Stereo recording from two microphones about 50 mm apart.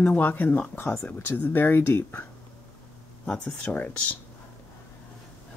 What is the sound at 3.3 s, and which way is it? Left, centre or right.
Speech, left.